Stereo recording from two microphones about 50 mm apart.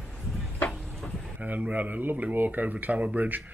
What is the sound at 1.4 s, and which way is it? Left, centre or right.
Speech, right.